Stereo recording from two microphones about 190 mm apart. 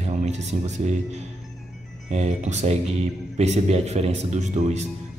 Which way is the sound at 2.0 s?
35° right (ahead or behind).